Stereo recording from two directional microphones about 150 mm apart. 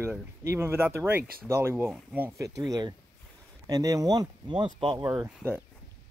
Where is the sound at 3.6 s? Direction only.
25° right (ahead or behind).